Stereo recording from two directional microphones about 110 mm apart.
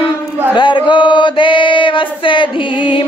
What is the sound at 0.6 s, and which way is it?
Chant, 45° left (ahead or behind).